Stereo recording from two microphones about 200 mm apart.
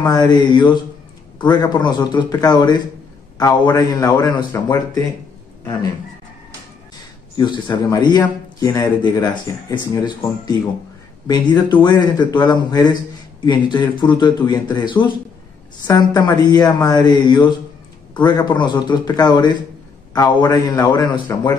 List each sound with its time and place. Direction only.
0.3 s a man's voice: 20° left (ahead or behind)
7.3 s speech: 20° left (ahead or behind)